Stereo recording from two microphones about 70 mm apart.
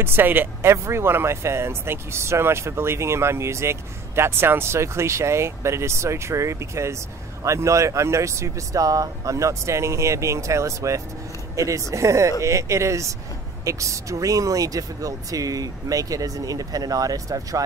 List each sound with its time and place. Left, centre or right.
0.0 s speech: right